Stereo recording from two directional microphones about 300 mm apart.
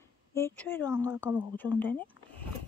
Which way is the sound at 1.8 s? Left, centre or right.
Centre.